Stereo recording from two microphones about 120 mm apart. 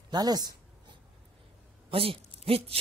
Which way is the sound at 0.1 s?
35° right (ahead or behind).